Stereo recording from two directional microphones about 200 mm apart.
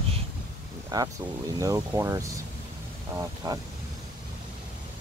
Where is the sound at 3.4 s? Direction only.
15° right (ahead or behind).